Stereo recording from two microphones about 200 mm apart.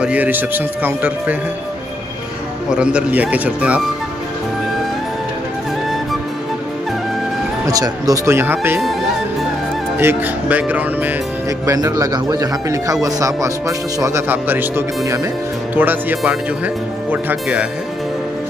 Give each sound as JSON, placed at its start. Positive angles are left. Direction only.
{"t": 0.0, "sound": "speech", "side_deg": -5}
{"t": 2.7, "sound": "speech", "side_deg": -5}
{"t": 7.6, "sound": "speech", "side_deg": -15}
{"t": 9.9, "sound": "speech", "side_deg": -10}